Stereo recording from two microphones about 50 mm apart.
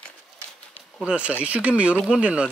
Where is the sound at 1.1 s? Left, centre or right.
Right.